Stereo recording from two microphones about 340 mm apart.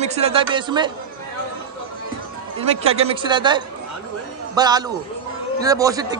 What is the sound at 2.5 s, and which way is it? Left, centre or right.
A man's voice, centre.